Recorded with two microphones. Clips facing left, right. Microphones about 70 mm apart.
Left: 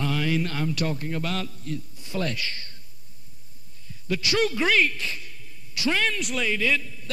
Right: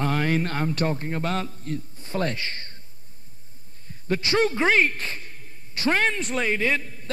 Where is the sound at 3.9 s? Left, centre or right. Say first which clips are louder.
Right 2 dB; right.